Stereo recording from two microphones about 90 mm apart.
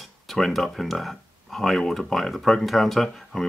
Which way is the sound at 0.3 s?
Centre (ahead or behind).